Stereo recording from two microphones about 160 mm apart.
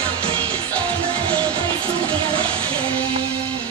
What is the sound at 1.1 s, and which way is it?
Music, 35° right (ahead or behind).